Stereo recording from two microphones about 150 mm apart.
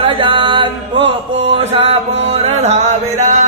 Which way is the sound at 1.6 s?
45° right (ahead or behind).